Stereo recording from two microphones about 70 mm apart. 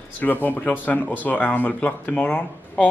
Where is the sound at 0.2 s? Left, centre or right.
Left.